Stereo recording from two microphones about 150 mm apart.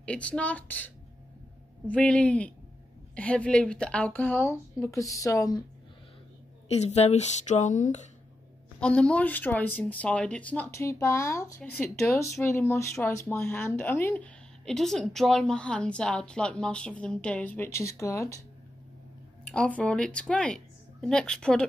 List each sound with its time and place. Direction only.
0.0 s a woman's voice: 10° left (ahead or behind)
6.7 s speech: 45° left (ahead or behind)
8.7 s a woman's voice: 5° left (ahead or behind)
19.5 s a woman's voice: 5° left (ahead or behind)